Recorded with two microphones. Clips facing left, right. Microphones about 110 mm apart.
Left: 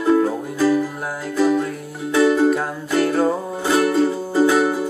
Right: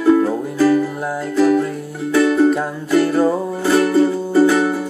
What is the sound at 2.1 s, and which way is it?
Music, 10° left (ahead or behind).